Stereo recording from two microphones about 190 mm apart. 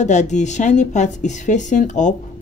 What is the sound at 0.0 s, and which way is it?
A woman's voice, 40° left (ahead or behind).